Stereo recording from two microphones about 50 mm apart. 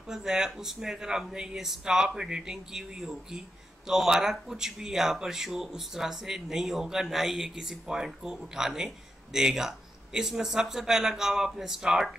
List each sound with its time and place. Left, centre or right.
0.1 s speech: centre